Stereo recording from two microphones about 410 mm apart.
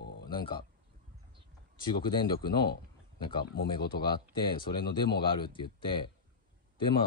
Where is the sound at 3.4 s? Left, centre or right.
Left.